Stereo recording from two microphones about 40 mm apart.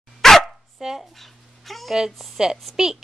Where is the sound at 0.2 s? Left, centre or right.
Centre.